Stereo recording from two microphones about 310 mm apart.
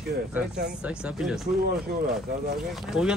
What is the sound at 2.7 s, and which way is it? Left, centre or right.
Speech, centre.